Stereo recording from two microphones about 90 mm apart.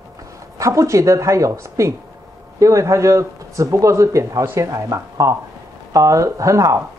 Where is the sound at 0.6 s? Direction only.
35° right (ahead or behind).